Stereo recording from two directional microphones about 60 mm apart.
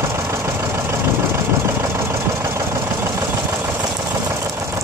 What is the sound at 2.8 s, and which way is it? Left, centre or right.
Engine, right.